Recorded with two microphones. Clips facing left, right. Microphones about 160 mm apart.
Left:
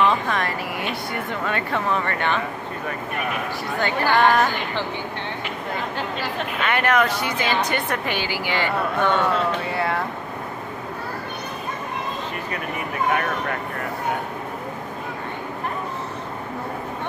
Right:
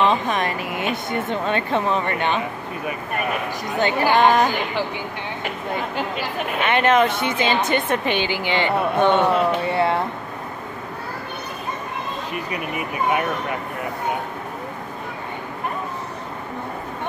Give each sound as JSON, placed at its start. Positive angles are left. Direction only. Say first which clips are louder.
{"t": 0.0, "sound": "speech", "louder": "right 1 dB", "side_deg": -20}
{"t": 3.7, "sound": "a woman's voice", "louder": "right 3 dB", "side_deg": -20}
{"t": 6.6, "sound": "a woman's voice", "louder": "right 3 dB", "side_deg": -25}